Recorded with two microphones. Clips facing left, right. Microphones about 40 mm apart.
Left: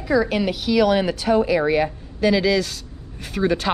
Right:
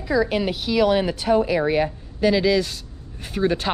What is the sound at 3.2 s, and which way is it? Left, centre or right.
Speech, left.